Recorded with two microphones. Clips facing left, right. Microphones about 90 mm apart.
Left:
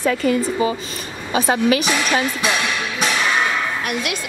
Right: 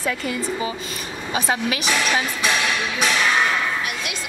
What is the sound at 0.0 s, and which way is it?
Speech, 50° left (ahead or behind).